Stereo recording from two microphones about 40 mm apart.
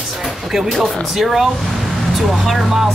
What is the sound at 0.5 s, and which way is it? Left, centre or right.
Speech, centre.